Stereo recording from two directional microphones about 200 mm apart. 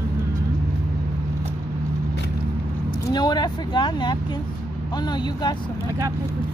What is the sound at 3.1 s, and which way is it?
Speech, 20° left (ahead or behind).